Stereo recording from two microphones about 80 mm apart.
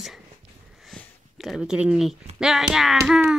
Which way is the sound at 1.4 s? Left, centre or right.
Centre.